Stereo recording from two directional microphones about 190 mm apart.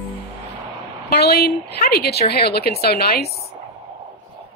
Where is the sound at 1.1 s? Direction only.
55° left (ahead or behind).